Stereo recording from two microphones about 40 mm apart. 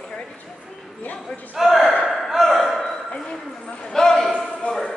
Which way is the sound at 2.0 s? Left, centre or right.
Centre.